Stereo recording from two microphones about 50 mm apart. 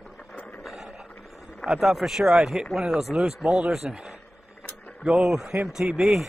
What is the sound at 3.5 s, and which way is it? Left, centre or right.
Speech, centre.